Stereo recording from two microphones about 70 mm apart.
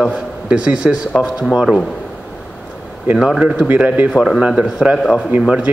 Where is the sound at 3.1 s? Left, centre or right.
Centre.